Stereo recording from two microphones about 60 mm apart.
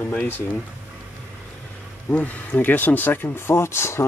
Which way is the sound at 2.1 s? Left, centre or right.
Left.